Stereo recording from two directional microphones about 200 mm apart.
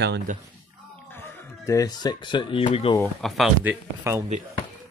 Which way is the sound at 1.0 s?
10° left (ahead or behind).